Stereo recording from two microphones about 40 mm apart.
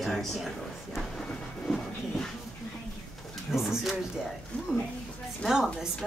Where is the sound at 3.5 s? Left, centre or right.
Centre.